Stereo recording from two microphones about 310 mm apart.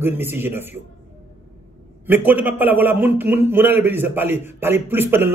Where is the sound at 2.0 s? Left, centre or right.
Centre.